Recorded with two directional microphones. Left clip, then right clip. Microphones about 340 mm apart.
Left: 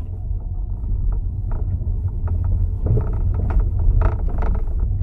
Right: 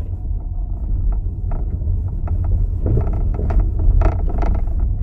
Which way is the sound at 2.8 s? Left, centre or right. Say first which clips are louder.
Right 3 dB; right.